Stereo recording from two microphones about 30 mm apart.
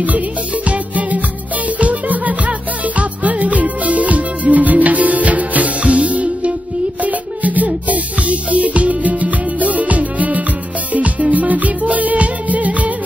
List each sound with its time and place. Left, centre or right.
0.7 s music: right
7.0 s music: right